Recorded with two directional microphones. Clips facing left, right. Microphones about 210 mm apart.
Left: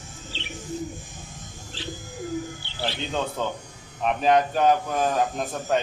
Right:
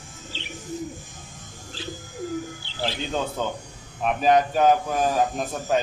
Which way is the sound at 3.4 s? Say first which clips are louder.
Even; 5° right (ahead or behind).